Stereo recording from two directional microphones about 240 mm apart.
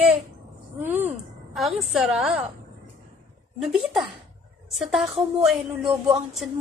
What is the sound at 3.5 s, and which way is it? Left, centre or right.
A woman's voice, centre.